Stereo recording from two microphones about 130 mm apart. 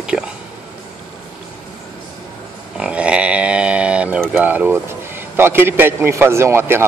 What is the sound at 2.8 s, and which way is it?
Pig, 10° right (ahead or behind).